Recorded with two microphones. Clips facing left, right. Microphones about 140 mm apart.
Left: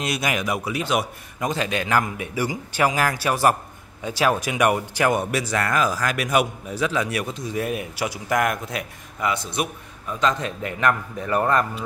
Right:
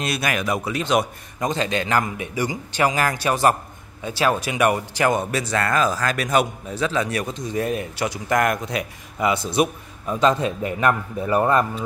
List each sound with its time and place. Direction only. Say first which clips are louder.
0.0 s speech: right 1 dB; 15° left (ahead or behind)
9.6 s a man's voice: right 6 dB; 30° right (ahead or behind)
11.1 s speech: right 4 dB; 15° right (ahead or behind)